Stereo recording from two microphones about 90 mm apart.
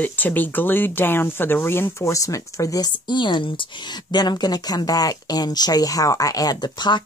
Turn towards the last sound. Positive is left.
turn(degrees=55)  # may be behind; listen again after turning